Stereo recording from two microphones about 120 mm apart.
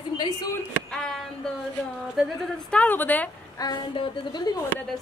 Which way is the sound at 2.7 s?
10° left (ahead or behind).